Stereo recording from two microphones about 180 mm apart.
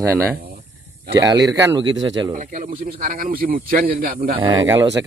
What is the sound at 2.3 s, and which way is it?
Speech, 45° right (ahead or behind).